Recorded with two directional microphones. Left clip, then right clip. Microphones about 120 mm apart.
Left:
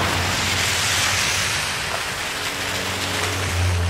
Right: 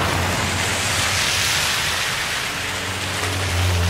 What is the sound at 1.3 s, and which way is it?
Whip, 15° right (ahead or behind).